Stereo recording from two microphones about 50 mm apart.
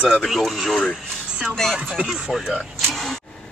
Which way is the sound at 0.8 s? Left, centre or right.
Centre.